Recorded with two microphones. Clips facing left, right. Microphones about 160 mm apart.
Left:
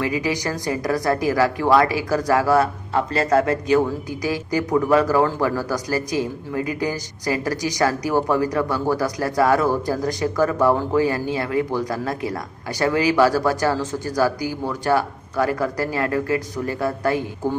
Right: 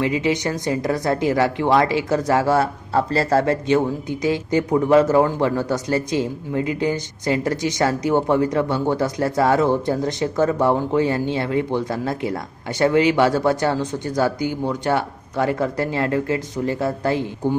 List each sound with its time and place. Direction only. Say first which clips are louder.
0.0 s a man's voice: right 3 dB; 25° right (ahead or behind)